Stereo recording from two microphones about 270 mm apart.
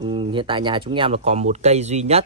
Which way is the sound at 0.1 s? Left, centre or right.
Centre.